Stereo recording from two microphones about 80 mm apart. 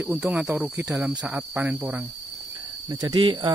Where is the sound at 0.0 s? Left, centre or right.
Centre.